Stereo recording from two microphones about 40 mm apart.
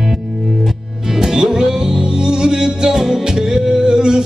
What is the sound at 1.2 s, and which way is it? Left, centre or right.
Music, centre.